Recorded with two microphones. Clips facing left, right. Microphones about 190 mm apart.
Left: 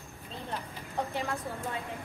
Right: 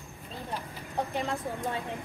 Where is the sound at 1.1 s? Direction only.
20° right (ahead or behind).